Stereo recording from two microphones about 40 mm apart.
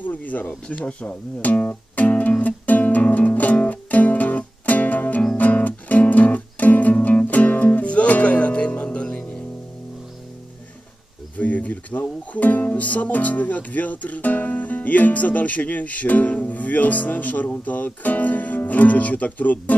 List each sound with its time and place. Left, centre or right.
0.0 s speech: left
2.0 s music: left
11.3 s speech: left